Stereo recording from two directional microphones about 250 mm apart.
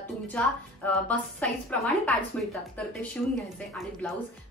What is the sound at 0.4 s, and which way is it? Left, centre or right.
Speech, centre.